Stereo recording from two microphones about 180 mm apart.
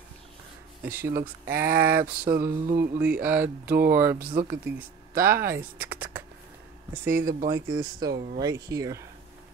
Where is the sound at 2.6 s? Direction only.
50° right (ahead or behind).